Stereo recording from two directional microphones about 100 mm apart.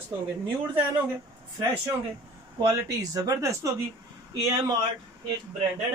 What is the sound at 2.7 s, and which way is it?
Speech, 40° right (ahead or behind).